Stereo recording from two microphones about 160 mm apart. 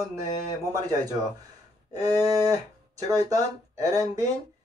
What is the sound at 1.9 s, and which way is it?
Speech, 20° right (ahead or behind).